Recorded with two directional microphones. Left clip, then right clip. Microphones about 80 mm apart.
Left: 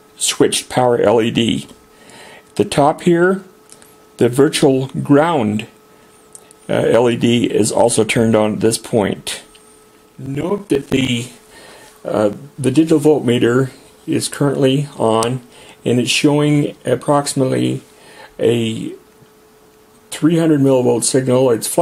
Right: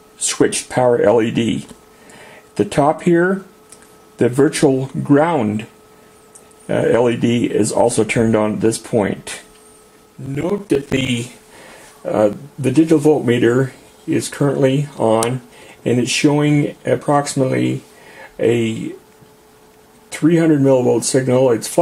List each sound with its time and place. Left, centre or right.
0.4 s speech: left
6.7 s speech: left
10.3 s speech: left
20.1 s speech: left